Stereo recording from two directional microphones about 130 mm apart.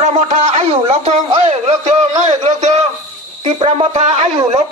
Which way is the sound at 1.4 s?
55° right (ahead or behind).